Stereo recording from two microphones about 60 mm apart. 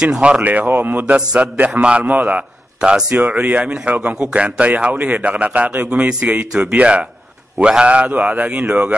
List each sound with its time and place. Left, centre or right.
0.0 s speech: centre
0.4 s a man's voice: right
1.1 s a man's voice: centre